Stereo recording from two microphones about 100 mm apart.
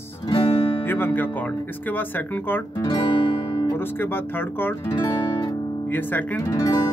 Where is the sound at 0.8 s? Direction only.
20° left (ahead or behind).